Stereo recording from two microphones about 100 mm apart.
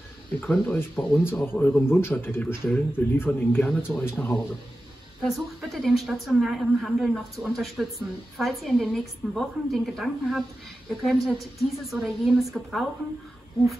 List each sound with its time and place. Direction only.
0.4 s speech: 15° left (ahead or behind)
5.2 s a woman's voice: centre (ahead or behind)